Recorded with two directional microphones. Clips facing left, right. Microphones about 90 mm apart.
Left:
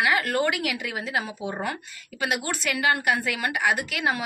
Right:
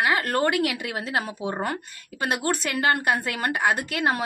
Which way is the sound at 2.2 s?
40° right (ahead or behind).